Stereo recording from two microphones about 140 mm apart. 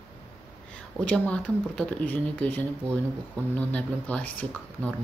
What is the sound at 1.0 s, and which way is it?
Speech, 10° left (ahead or behind).